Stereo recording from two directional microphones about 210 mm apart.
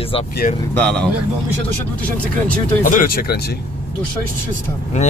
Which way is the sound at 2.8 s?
40° left (ahead or behind).